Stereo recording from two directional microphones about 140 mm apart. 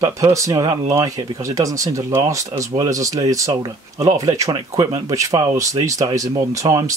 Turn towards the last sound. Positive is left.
turn(degrees=-25)  # may be behind; listen again after turning